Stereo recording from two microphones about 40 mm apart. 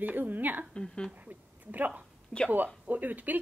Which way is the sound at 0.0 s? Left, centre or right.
Right.